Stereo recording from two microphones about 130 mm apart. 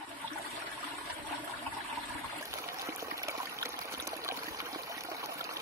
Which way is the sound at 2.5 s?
20° right (ahead or behind).